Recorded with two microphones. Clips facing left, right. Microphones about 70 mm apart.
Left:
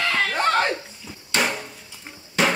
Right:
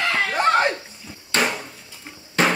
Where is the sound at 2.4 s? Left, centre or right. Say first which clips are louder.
Right 1 dB; right.